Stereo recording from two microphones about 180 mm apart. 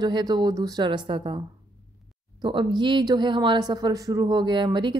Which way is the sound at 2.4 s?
25° right (ahead or behind).